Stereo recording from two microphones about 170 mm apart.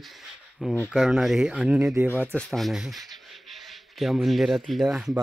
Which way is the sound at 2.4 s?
Centre (ahead or behind).